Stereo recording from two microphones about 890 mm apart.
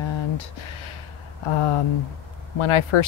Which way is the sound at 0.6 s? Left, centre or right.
Left.